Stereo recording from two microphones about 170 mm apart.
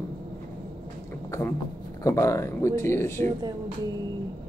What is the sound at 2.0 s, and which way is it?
Speech, 20° left (ahead or behind).